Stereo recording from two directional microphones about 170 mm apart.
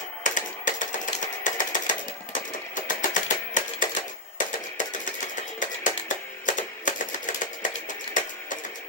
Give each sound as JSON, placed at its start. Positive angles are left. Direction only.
{"t": 0.2, "sound": "typewriter", "side_deg": 50}
{"t": 5.6, "sound": "music", "side_deg": 50}